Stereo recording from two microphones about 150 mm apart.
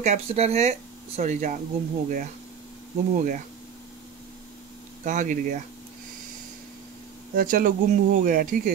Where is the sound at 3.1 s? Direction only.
60° right (ahead or behind).